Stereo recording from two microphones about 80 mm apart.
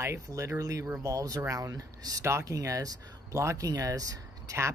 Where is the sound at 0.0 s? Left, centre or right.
Right.